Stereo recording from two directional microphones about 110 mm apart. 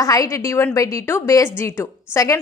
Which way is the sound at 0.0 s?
30° left (ahead or behind).